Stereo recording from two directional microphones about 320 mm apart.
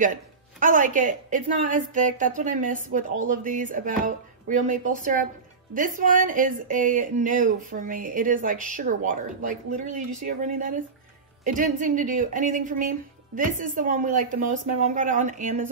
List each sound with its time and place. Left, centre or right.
0.0 s a woman's voice: right